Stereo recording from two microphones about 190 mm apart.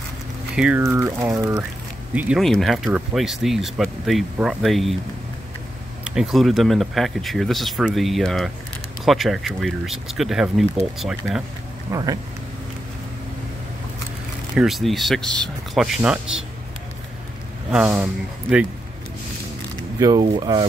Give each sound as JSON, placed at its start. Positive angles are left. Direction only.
{"t": 0.6, "sound": "speech", "side_deg": -10}
{"t": 2.1, "sound": "speech", "side_deg": -5}
{"t": 6.0, "sound": "speech", "side_deg": -5}
{"t": 11.9, "sound": "speech", "side_deg": -20}
{"t": 14.5, "sound": "speech", "side_deg": 0}
{"t": 17.6, "sound": "speech", "side_deg": -5}
{"t": 20.0, "sound": "speech", "side_deg": -20}